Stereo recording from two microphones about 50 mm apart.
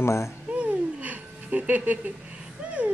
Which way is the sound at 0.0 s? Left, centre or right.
Left.